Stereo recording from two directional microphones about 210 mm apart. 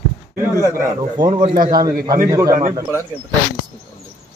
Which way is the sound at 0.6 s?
15° right (ahead or behind).